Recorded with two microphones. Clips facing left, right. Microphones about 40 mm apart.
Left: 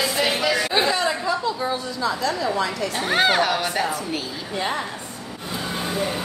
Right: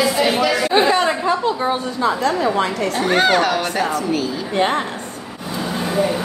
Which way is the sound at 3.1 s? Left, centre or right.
Centre.